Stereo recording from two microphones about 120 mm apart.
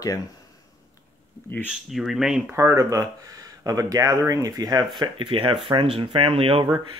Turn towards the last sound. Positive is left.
turn(degrees=-50)  # may be behind; listen again after turning